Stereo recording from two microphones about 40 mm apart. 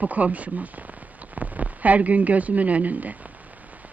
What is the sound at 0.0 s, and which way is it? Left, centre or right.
Speech, right.